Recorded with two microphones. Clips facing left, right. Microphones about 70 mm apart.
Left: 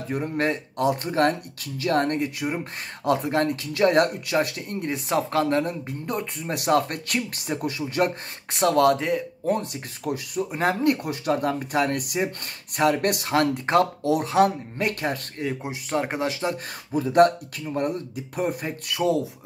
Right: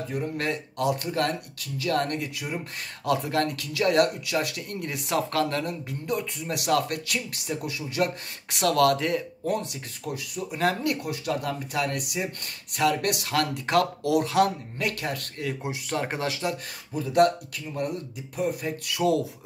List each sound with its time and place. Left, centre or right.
0.1 s speech: left
3.1 s speech: left
4.6 s speech: left
9.5 s speech: left
10.6 s speech: left
14.8 s speech: left
16.9 s speech: left